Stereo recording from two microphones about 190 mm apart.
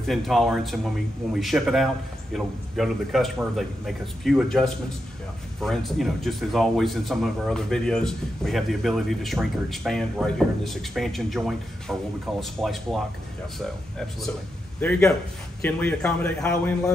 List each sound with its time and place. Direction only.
0.0 s speech: centre (ahead or behind)
14.8 s a man's voice: 5° left (ahead or behind)